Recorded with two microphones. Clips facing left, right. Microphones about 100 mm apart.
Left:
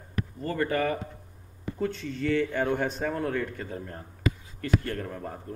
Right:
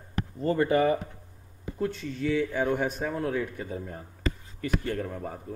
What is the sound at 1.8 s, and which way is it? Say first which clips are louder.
A man's voice: even; centre (ahead or behind).